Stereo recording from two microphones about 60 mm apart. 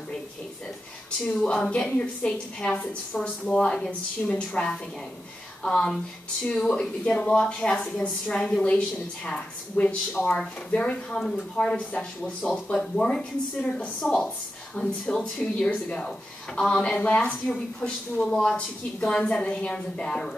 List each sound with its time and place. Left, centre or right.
1.2 s a woman's voice: centre
3.2 s a woman's voice: centre